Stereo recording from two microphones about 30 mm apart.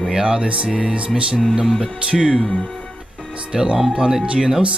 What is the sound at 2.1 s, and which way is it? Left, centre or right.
Speech, right.